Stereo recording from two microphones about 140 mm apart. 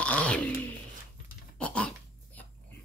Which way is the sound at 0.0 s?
10° left (ahead or behind).